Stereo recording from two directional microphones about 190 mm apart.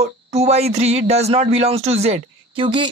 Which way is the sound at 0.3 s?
35° right (ahead or behind).